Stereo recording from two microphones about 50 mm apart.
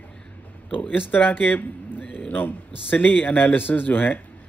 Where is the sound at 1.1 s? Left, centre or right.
Left.